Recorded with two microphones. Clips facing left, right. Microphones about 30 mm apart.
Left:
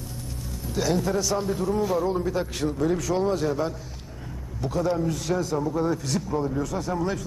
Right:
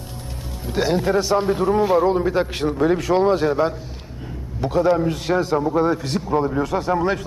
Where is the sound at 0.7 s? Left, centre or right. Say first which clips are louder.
Right 5 dB; right.